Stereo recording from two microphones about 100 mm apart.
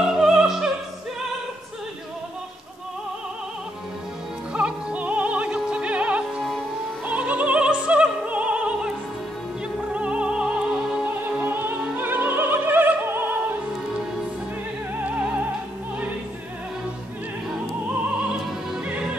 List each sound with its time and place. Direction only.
0.0 s opera: 5° right (ahead or behind)
4.6 s music: 10° right (ahead or behind)
7.1 s opera: 15° right (ahead or behind)
9.8 s music: 10° right (ahead or behind)
15.0 s music: 15° right (ahead or behind)